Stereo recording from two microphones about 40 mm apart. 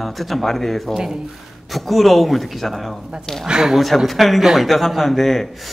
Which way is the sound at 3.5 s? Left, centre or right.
Centre.